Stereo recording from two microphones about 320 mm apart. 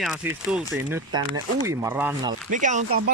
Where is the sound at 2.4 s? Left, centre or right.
Right.